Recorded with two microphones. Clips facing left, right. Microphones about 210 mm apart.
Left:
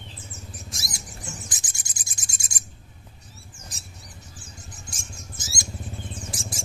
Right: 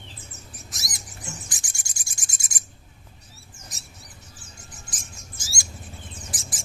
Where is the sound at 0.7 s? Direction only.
30° left (ahead or behind).